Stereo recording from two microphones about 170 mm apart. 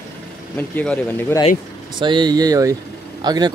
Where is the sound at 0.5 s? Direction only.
10° left (ahead or behind).